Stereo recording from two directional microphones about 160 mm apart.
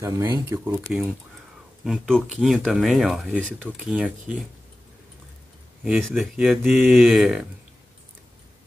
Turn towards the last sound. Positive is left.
turn(degrees=-5)  # may be behind; listen again after turning